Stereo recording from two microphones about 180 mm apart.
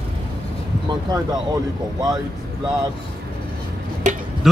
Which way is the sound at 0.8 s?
20° right (ahead or behind).